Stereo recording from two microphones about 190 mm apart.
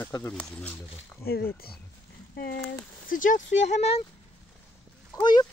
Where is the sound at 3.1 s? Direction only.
45° left (ahead or behind).